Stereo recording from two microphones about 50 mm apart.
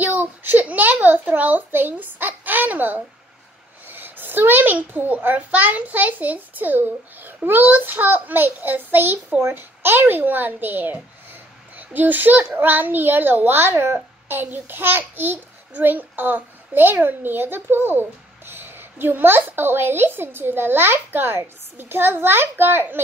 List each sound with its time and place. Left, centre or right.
0.0 s a child's voice: right